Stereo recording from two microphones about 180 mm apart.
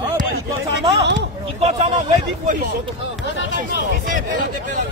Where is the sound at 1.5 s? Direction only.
40° right (ahead or behind).